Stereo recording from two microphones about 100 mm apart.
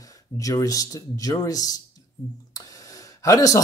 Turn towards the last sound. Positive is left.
turn(degrees=35)  # may be behind; listen again after turning